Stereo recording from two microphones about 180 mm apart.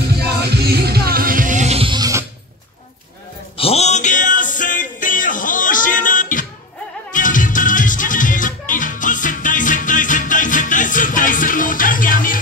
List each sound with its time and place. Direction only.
0.4 s music: 60° right (ahead or behind); by 2.2 s 20° right (ahead or behind)
3.5 s music: 35° left (ahead or behind); by 12.4 s 50° left (ahead or behind)